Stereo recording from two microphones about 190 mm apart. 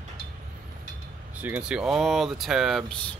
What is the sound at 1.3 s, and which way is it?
Speech, 10° right (ahead or behind).